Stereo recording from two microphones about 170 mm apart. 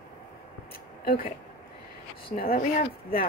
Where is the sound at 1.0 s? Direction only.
55° left (ahead or behind).